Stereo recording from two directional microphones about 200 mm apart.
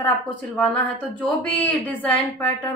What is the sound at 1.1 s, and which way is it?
A woman's voice, 5° left (ahead or behind).